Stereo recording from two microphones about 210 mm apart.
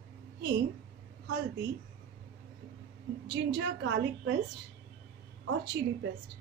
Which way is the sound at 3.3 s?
55° right (ahead or behind).